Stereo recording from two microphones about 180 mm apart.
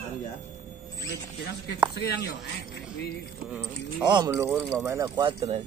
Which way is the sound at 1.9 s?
65° left (ahead or behind).